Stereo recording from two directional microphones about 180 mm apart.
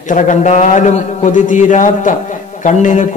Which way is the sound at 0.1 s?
45° left (ahead or behind).